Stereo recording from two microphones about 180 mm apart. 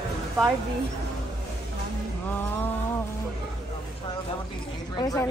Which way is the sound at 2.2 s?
10° left (ahead or behind).